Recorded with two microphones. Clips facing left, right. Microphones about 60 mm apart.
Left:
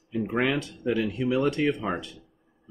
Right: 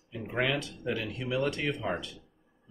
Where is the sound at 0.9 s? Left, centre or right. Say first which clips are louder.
Left 7 dB; left.